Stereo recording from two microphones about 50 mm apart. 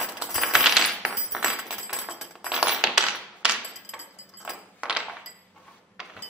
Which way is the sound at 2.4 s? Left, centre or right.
Centre.